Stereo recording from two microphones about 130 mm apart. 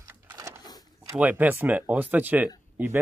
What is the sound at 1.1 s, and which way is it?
Speech, 15° right (ahead or behind).